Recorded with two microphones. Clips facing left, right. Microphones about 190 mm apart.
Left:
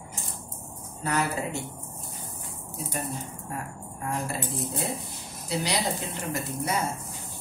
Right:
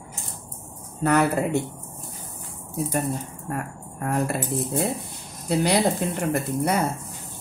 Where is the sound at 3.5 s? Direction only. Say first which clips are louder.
Right 7 dB; 60° right (ahead or behind).